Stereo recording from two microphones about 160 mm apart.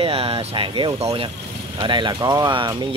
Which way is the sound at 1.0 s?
40° right (ahead or behind).